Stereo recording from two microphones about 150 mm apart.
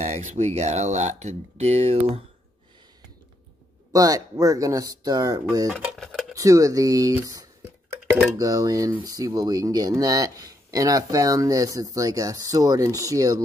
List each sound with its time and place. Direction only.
0.0 s speech: 50° right (ahead or behind)
3.9 s speech: 25° right (ahead or behind)
5.7 s dishes: centre (ahead or behind)
6.3 s speech: 20° right (ahead or behind)